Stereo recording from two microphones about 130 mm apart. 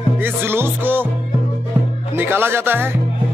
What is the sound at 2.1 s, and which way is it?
Music, 15° right (ahead or behind).